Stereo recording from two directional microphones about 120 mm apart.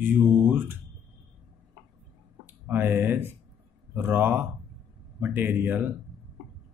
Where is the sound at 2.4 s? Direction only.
20° right (ahead or behind).